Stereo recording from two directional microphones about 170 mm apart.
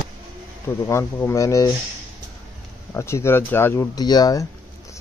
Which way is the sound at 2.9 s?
15° left (ahead or behind).